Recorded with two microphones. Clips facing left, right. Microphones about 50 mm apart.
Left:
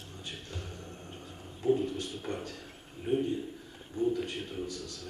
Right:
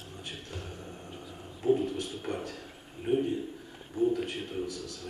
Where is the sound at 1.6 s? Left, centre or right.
Centre.